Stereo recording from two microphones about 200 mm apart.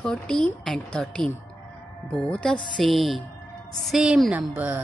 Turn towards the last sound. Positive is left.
turn(degrees=-5)  # may be behind; listen again after turning